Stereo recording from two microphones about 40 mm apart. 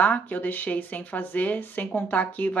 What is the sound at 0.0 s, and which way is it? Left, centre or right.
Speech, left.